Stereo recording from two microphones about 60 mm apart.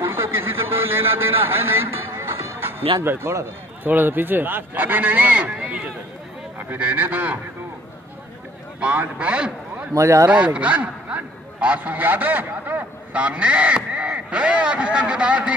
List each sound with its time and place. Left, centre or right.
0.0 s a sound: right
3.8 s speech: right
8.7 s a man's voice: right
9.9 s speech: right
10.3 s a man's voice: centre